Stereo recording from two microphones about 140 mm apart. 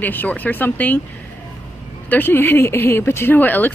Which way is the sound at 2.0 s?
15° left (ahead or behind).